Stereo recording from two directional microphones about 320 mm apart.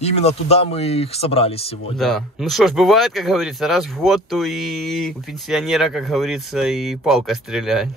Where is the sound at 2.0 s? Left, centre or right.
Centre.